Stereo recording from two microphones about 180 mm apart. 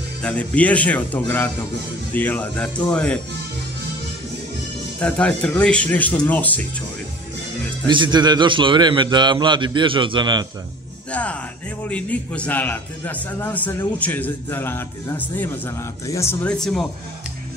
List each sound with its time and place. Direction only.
0.2 s a man's voice: 5° left (ahead or behind)
5.0 s a man's voice: 5° left (ahead or behind)
7.9 s a man's voice: 25° right (ahead or behind)
11.1 s a man's voice: 5° left (ahead or behind)
16.5 s speech: 5° left (ahead or behind)